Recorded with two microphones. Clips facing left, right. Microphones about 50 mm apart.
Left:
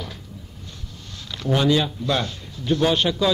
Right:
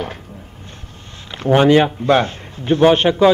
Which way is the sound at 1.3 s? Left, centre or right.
Right.